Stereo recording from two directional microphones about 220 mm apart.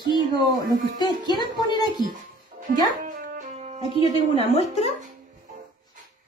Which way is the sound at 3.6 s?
30° right (ahead or behind).